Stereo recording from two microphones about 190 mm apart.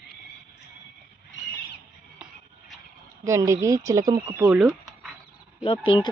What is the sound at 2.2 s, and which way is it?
Music, 5° right (ahead or behind).